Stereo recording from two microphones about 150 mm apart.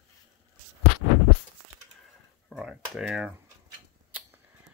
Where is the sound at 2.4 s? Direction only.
Centre (ahead or behind).